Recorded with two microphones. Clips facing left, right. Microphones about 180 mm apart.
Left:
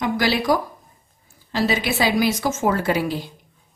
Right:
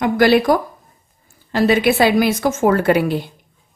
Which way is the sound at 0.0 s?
55° right (ahead or behind).